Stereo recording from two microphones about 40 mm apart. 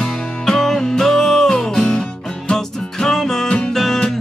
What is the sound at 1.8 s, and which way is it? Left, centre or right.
Music, left.